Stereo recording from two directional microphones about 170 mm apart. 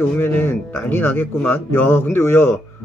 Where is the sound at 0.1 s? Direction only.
10° left (ahead or behind).